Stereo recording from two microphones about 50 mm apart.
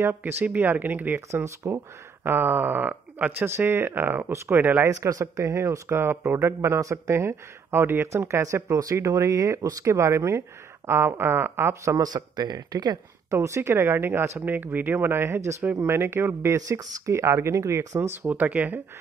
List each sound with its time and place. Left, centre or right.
0.0 s speech: right
1.3 s speech: right
2.2 s speech: right
3.4 s speech: right
4.8 s speech: right
8.1 s speech: right
8.5 s speech: right
10.9 s speech: right
11.8 s speech: right
13.3 s speech: right
13.6 s speech: right
18.3 s speech: right